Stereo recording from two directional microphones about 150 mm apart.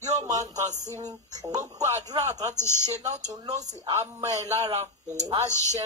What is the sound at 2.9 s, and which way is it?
Speech, 50° right (ahead or behind).